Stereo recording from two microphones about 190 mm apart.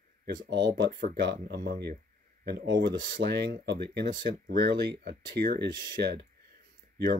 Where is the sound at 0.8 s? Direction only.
55° right (ahead or behind).